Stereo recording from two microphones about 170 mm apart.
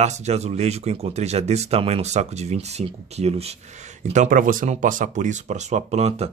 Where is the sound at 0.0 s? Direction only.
40° right (ahead or behind).